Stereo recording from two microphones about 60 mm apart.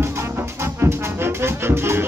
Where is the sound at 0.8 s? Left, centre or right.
Right.